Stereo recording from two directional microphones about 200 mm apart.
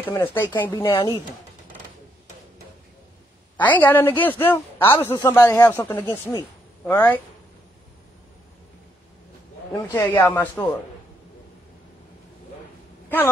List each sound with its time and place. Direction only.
0.0 s speech: 10° left (ahead or behind)
3.5 s speech: 10° left (ahead or behind)
9.7 s speech: 15° left (ahead or behind)